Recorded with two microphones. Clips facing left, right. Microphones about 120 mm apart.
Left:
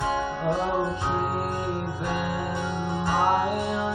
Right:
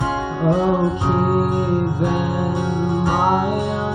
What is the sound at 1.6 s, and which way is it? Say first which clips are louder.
Music: right 10 dB; 60° right (ahead or behind).